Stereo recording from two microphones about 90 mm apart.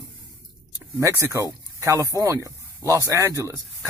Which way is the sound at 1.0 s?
30° right (ahead or behind).